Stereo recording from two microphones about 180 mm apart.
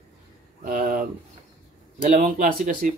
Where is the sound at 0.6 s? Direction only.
50° right (ahead or behind).